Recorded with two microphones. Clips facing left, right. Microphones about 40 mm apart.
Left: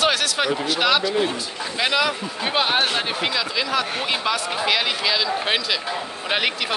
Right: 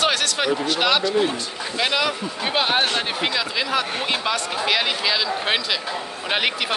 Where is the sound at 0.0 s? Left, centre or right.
Centre.